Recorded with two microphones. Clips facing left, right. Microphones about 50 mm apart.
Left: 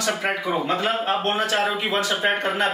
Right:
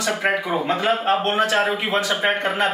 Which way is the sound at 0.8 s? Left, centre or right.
Right.